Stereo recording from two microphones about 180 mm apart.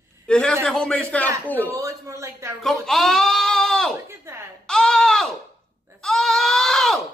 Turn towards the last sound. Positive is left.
turn(degrees=0)  # may be behind; listen again after turning